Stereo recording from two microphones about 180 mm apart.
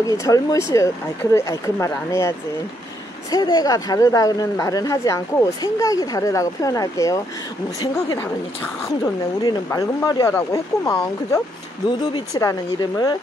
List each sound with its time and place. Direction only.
0.0 s a woman's voice: 20° left (ahead or behind)